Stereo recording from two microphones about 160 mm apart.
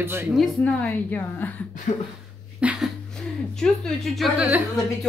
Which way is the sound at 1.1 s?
10° left (ahead or behind).